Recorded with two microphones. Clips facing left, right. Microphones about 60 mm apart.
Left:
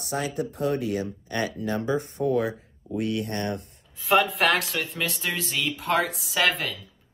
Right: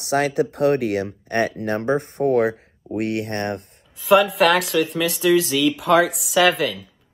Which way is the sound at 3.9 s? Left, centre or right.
Centre.